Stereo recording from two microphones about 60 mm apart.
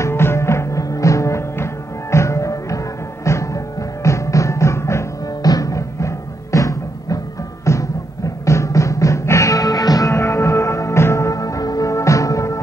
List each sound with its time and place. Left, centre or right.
0.0 s music: left
5.4 s music: left
7.6 s music: left